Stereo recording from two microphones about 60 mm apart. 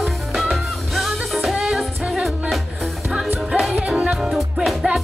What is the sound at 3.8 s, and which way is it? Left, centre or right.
Music, centre.